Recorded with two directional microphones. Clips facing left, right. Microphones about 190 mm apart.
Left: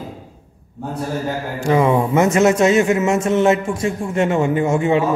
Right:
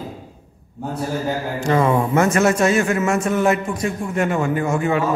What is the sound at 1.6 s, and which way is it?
A man's voice, 15° left (ahead or behind).